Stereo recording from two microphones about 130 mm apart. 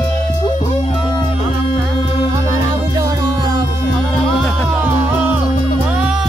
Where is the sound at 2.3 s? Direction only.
30° right (ahead or behind).